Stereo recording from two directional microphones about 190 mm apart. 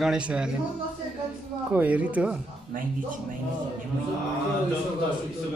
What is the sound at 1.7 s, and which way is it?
Speech, 10° right (ahead or behind).